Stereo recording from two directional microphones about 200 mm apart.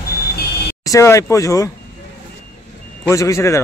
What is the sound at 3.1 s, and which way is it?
Speech, 15° left (ahead or behind).